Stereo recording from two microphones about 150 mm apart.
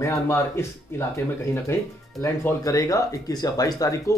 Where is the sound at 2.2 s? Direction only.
20° left (ahead or behind).